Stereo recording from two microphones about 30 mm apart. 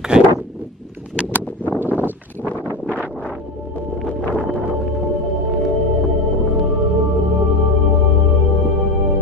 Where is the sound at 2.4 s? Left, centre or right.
Left.